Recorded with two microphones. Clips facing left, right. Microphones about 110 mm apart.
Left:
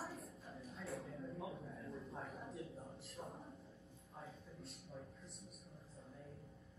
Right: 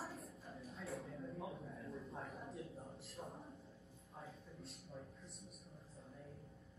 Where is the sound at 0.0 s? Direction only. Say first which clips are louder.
Even; centre (ahead or behind).